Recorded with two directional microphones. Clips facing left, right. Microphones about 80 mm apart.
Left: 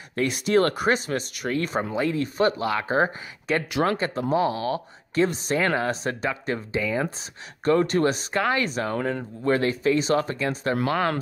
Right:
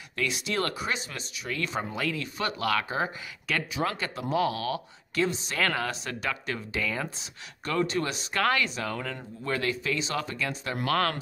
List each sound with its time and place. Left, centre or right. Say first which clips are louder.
0.1 s speech: left 9 dB; left
1.5 s speech: left 6 dB; left
5.9 s speech: left 6 dB; left
8.3 s speech: left 2 dB; left
8.8 s speech: left 7 dB; left
10.9 s speech: even; left